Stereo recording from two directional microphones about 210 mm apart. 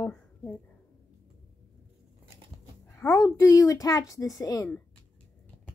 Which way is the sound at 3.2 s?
15° left (ahead or behind).